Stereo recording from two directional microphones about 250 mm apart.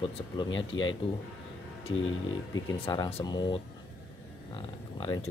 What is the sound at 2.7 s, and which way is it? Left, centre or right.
Speech, centre.